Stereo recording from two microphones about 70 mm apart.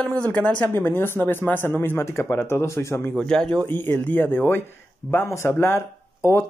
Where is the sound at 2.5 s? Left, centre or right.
Left.